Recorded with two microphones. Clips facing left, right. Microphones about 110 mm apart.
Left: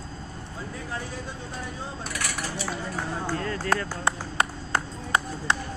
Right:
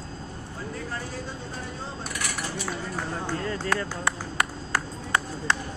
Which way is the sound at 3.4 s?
20° right (ahead or behind).